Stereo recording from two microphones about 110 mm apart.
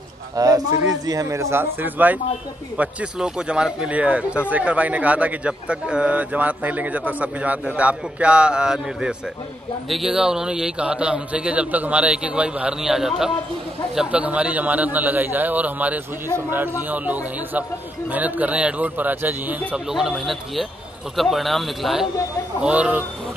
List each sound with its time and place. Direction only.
0.4 s a man's voice: 35° right (ahead or behind); by 19.5 s 15° right (ahead or behind)
19.7 s a man's voice: 5° right (ahead or behind)
22.6 s speech: 10° right (ahead or behind)